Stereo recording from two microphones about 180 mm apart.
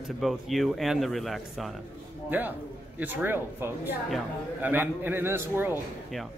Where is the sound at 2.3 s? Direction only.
10° right (ahead or behind).